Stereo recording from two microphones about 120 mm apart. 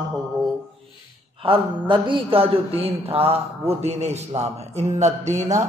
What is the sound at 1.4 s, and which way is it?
A man's voice, 45° right (ahead or behind).